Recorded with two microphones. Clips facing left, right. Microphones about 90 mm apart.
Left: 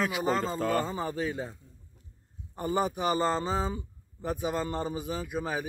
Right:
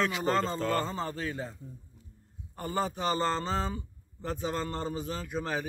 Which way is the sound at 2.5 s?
20° left (ahead or behind).